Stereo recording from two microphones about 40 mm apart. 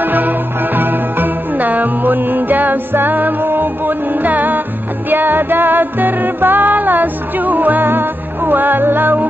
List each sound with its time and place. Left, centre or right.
0.0 s music: right